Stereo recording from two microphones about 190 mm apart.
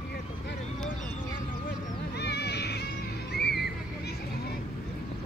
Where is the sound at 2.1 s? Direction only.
60° left (ahead or behind).